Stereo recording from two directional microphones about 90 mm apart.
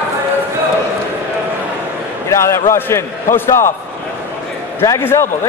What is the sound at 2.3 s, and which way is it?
Speech, 30° left (ahead or behind).